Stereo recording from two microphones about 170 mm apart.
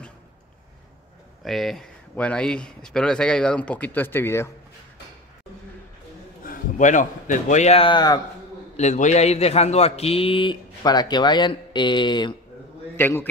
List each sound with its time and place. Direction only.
1.4 s speech: centre (ahead or behind)
6.4 s speech: 50° left (ahead or behind); by 8.2 s 25° left (ahead or behind)
8.7 s a man's voice: 45° left (ahead or behind); by 12.4 s 25° left (ahead or behind)
12.9 s a man's voice: 15° left (ahead or behind)